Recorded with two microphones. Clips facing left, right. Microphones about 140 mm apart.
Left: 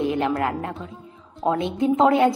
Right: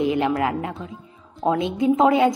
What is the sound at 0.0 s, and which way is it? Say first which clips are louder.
A man's voice: right 2 dB; 15° right (ahead or behind).